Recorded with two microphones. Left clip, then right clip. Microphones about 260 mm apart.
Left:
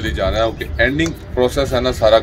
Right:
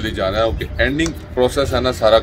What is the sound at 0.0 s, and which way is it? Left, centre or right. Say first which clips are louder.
Speech: even; centre.